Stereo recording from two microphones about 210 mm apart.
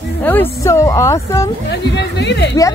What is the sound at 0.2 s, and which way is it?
Speech, 10° left (ahead or behind).